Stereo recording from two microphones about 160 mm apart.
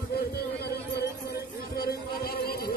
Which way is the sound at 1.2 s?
75° left (ahead or behind).